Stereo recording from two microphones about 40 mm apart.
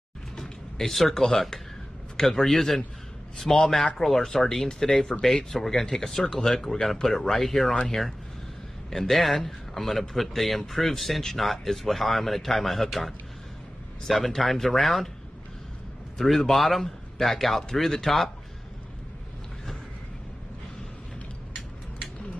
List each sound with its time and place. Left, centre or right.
0.4 s a man's voice: centre
7.7 s speech: left
8.9 s speech: centre
16.2 s a man's voice: centre